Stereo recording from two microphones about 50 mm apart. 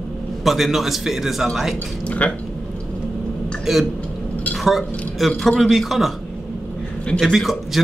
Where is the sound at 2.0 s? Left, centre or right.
Left.